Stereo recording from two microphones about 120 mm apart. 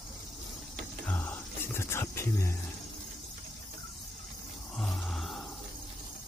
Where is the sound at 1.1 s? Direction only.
15° left (ahead or behind).